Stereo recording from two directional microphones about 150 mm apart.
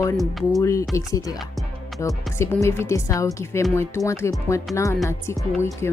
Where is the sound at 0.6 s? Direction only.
20° left (ahead or behind).